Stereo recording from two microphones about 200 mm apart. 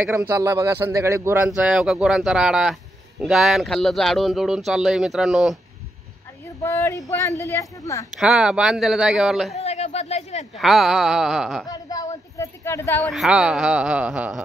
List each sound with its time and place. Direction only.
0.0 s a man's voice: 10° right (ahead or behind)
6.6 s speech: 15° left (ahead or behind)
8.2 s a man's voice: 5° right (ahead or behind)
9.6 s a sound: 30° left (ahead or behind)
10.6 s a man's voice: centre (ahead or behind)
11.6 s speech: 20° left (ahead or behind)
13.1 s a man's voice: centre (ahead or behind)